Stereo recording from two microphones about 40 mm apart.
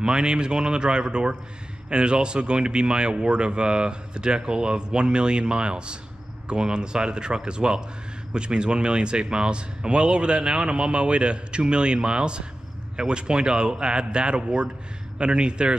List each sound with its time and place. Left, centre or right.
0.0 s speech: right